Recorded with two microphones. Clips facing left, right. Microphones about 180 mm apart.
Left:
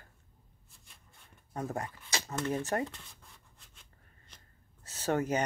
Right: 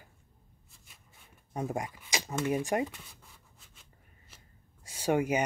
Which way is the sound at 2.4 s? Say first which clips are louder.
Right 3 dB; 15° right (ahead or behind).